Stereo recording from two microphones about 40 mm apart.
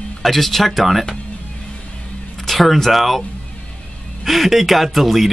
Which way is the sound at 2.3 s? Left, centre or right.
Centre.